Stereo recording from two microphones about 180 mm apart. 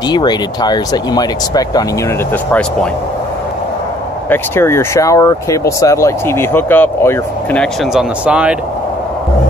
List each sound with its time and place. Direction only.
0.1 s speech: 25° left (ahead or behind)
4.3 s speech: 15° left (ahead or behind); by 8.5 s 5° right (ahead or behind)